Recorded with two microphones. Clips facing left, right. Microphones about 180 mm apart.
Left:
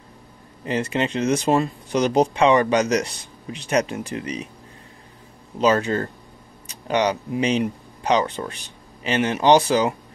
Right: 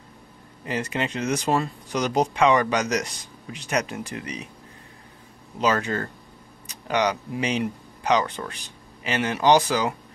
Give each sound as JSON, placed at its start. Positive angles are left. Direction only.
{"t": 0.7, "sound": "speech", "side_deg": 25}
{"t": 5.6, "sound": "speech", "side_deg": 25}